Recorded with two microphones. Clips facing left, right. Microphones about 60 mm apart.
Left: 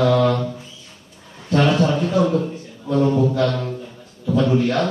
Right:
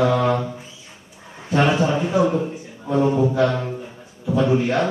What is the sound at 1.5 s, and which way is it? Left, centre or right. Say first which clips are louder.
A man's voice: left 1 dB; centre.